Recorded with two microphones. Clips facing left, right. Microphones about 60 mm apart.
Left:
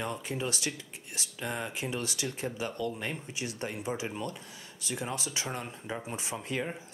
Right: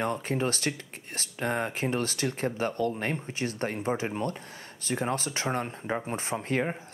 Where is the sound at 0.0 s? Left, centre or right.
Right.